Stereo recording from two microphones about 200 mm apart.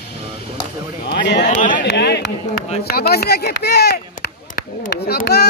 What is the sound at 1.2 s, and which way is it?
Speech, 60° left (ahead or behind).